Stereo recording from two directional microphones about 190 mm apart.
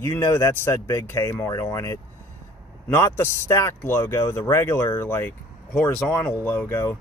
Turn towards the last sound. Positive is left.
turn(degrees=10)  # may be behind; listen again after turning